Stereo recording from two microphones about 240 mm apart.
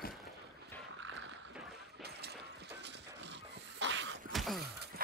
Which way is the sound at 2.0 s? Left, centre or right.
Right.